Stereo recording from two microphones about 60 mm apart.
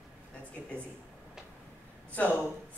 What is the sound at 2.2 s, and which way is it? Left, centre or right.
Speech, left.